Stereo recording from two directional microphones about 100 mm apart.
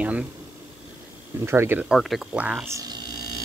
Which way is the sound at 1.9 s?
Centre (ahead or behind).